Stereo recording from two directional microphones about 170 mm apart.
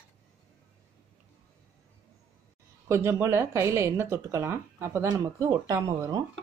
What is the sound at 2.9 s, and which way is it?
Speech, 15° right (ahead or behind).